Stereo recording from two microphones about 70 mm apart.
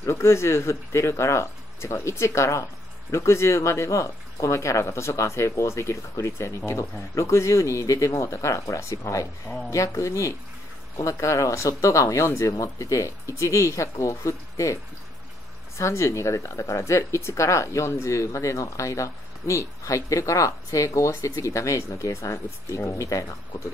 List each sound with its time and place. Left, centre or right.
0.0 s speech: left
15.8 s speech: left